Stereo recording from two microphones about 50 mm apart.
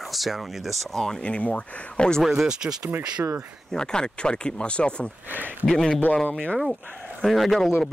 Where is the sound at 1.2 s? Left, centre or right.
Left.